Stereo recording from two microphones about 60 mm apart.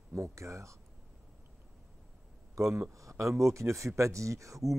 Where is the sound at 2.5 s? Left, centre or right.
Right.